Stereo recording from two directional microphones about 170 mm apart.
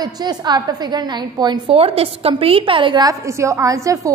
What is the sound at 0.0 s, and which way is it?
A woman's voice, 25° right (ahead or behind).